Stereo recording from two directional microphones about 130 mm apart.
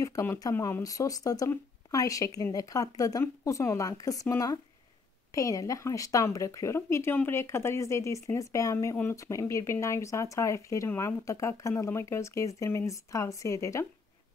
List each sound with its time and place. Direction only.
0.0 s speech: 20° left (ahead or behind)